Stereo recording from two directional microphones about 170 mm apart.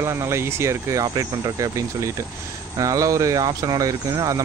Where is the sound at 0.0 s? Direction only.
15° right (ahead or behind).